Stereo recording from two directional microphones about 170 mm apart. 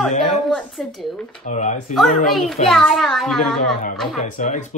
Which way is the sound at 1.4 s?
45° left (ahead or behind).